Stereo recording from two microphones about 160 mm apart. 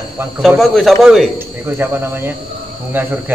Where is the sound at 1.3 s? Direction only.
15° right (ahead or behind).